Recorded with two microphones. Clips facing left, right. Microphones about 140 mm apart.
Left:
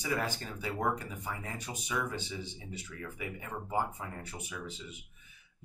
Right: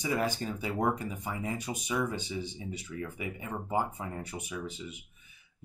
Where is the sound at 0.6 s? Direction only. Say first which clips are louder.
Right 2 dB; 15° right (ahead or behind).